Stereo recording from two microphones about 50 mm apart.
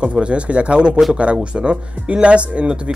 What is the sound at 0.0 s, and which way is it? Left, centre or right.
Speech, right.